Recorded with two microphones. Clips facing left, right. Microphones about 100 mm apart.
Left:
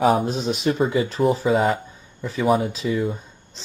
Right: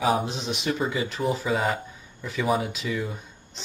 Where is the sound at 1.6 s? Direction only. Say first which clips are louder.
Left 5 dB; 25° left (ahead or behind).